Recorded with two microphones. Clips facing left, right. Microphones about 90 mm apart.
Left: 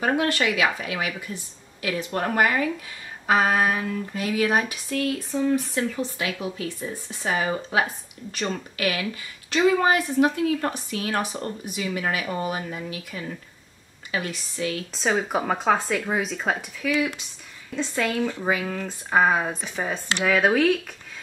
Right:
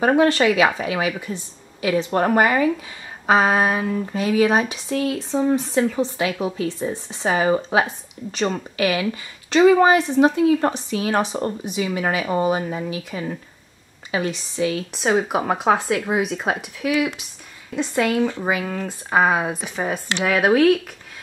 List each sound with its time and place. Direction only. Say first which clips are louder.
0.0 s speech: right 7 dB; 30° right (ahead or behind); by 20.7 s 5° right (ahead or behind)